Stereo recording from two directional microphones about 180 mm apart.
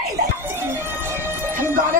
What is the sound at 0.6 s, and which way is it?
Music, 15° right (ahead or behind).